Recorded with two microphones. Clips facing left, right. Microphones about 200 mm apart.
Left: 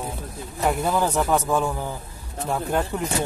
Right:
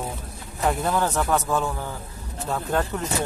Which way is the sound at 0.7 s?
5° left (ahead or behind).